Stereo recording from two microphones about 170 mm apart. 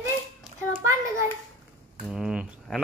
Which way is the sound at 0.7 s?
15° right (ahead or behind).